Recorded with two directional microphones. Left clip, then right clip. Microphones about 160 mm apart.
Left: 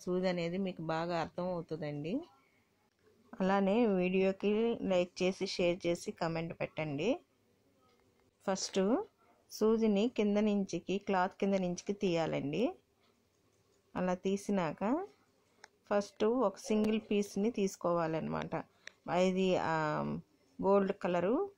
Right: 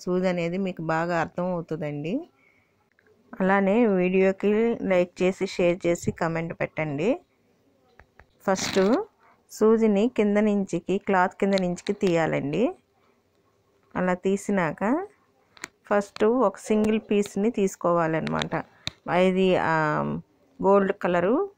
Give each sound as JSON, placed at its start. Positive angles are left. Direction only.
{"t": 0.0, "sound": "speech", "side_deg": -25}
{"t": 3.3, "sound": "speech", "side_deg": -25}
{"t": 8.4, "sound": "speech", "side_deg": -35}
{"t": 13.9, "sound": "speech", "side_deg": -20}
{"t": 14.6, "sound": "speech", "side_deg": -30}